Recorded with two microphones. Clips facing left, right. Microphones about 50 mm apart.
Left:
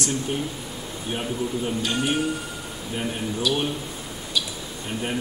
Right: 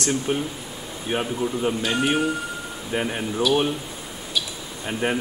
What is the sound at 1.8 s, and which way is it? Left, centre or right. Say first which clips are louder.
Speech: right 2 dB; centre.